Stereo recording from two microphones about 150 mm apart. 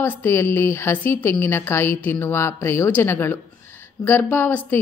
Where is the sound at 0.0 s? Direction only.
15° left (ahead or behind).